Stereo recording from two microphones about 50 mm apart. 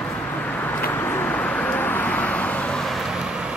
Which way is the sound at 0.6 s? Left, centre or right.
Left.